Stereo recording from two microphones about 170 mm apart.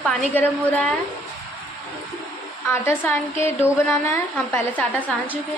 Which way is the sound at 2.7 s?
15° left (ahead or behind).